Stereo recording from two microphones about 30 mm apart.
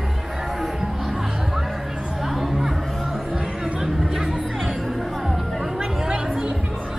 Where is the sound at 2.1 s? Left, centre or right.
Centre.